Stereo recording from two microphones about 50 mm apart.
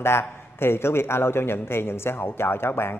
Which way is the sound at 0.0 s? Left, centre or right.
Left.